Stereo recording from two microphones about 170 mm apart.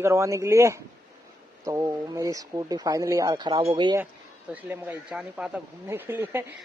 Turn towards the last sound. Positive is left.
turn(degrees=-15)  # may be behind; listen again after turning